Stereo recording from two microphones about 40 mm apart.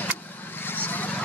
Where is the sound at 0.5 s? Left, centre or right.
Left.